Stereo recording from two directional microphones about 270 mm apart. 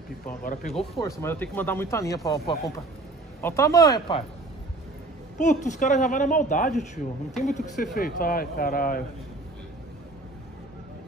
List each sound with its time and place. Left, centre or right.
0.3 s speech: left
1.2 s speech: centre
5.4 s speech: left